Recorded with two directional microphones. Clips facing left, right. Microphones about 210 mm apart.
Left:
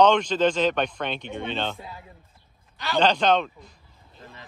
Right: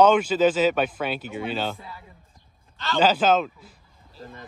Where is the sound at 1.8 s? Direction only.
25° left (ahead or behind).